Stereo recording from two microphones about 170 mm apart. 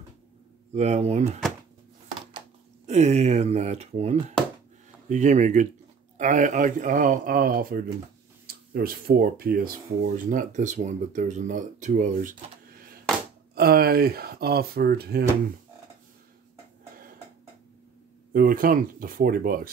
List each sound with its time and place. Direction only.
0.7 s speech: 40° right (ahead or behind)
2.9 s speech: 40° right (ahead or behind)
13.6 s speech: 65° right (ahead or behind)
18.3 s speech: 55° right (ahead or behind)